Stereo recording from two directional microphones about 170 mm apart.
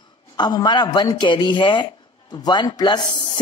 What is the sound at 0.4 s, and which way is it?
A man's voice, 25° left (ahead or behind).